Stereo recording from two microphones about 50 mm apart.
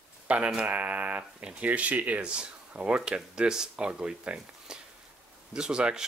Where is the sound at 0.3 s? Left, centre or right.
Right.